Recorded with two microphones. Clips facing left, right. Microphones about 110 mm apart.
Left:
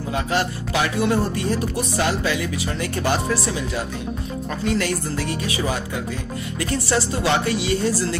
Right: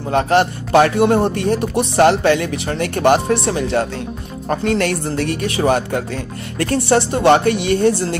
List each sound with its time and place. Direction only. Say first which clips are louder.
0.1 s a woman's voice: right 9 dB; 65° right (ahead or behind)